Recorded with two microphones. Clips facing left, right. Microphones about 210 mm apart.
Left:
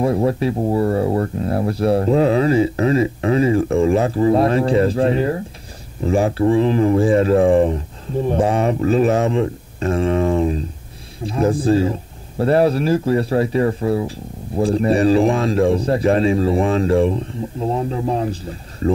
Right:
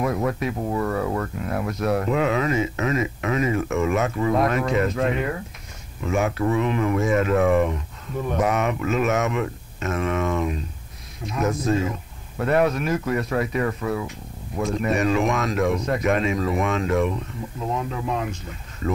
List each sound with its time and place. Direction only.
0.0 s speech: 30° left (ahead or behind)